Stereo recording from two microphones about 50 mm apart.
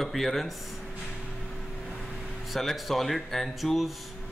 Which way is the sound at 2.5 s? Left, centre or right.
Centre.